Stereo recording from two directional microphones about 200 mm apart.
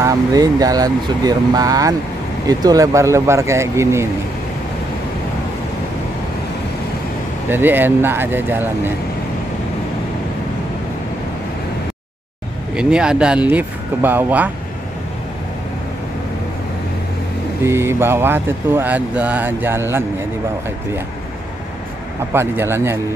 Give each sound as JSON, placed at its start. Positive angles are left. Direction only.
{"t": 0.0, "sound": "speech", "side_deg": -20}
{"t": 7.4, "sound": "speech", "side_deg": -10}
{"t": 12.7, "sound": "speech", "side_deg": -5}
{"t": 17.6, "sound": "speech", "side_deg": -15}
{"t": 22.3, "sound": "speech", "side_deg": -10}